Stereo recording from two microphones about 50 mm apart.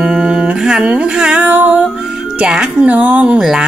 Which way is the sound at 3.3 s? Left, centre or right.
Centre.